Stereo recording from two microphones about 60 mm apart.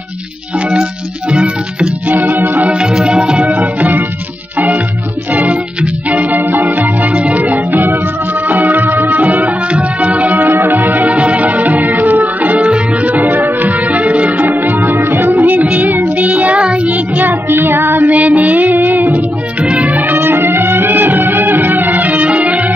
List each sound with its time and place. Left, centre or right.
1.3 s music: centre
2.1 s music: right
2.7 s music: centre
3.4 s music: right
19.6 s music: right
20.2 s music: right